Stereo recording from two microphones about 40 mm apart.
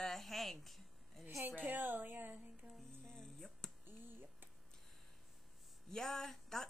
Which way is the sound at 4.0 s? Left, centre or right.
Right.